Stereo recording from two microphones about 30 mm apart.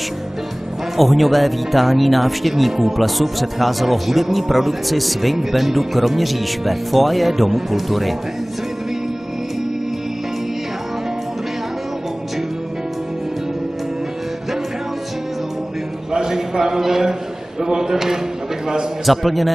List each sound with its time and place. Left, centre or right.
0.9 s speech: centre
16.1 s a sound: centre
17.6 s a man's voice: centre
19.0 s speech: centre